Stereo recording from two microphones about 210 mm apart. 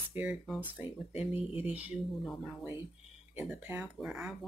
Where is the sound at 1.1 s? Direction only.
30° left (ahead or behind).